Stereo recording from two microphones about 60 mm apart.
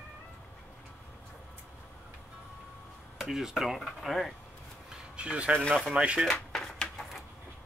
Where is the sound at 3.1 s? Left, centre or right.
Centre.